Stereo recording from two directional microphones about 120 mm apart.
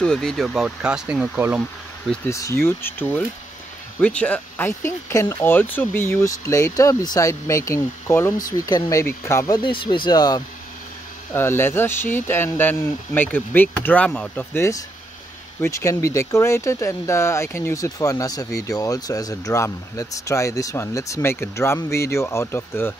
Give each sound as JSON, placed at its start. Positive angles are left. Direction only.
{"t": 0.0, "sound": "speech", "side_deg": 5}
{"t": 2.2, "sound": "speech", "side_deg": 25}
{"t": 9.6, "sound": "speech", "side_deg": 45}
{"t": 11.3, "sound": "speech", "side_deg": 20}